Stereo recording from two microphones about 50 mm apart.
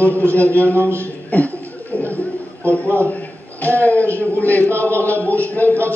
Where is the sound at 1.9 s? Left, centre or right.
Left.